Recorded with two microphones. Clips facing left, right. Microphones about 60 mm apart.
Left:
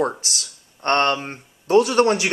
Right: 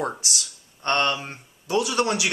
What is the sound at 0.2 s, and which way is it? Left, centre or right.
Speech, left.